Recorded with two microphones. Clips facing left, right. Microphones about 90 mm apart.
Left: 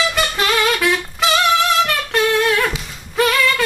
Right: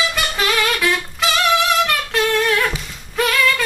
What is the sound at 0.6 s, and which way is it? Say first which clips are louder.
Music: left 2 dB; centre (ahead or behind).